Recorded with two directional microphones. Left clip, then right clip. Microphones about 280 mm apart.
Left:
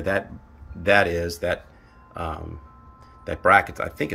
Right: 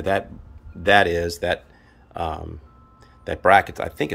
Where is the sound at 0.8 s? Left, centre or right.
Centre.